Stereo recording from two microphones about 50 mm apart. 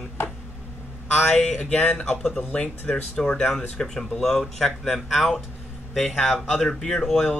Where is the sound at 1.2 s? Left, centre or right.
Centre.